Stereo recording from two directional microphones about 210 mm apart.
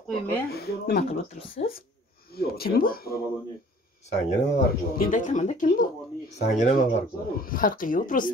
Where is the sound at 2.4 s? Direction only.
45° left (ahead or behind).